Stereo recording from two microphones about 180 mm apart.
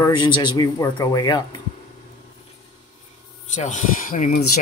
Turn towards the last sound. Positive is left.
turn(degrees=50)  # may be behind; listen again after turning